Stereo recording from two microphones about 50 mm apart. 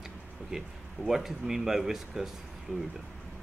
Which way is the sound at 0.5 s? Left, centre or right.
Centre.